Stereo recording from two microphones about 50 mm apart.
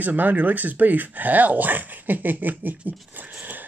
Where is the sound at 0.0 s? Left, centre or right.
Right.